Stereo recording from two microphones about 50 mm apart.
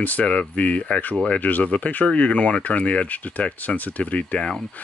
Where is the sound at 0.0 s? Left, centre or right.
Left.